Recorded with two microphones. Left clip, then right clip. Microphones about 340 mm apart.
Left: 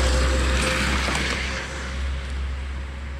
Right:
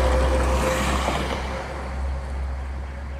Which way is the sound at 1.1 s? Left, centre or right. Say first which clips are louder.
Left 1 dB; right.